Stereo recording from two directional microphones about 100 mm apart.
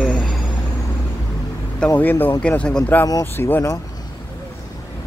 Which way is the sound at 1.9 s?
20° left (ahead or behind).